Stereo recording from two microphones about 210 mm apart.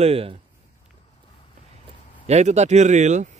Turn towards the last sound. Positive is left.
turn(degrees=-35)  # may be behind; listen again after turning